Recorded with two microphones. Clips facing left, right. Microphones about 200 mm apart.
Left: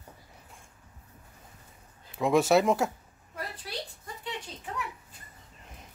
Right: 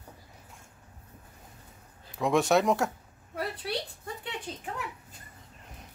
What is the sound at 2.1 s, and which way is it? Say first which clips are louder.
Speech: left 1 dB; centre (ahead or behind).